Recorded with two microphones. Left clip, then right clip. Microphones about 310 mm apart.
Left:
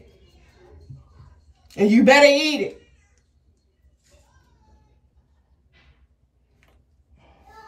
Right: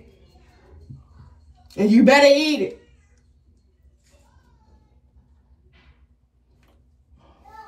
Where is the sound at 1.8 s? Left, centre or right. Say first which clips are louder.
Even; centre.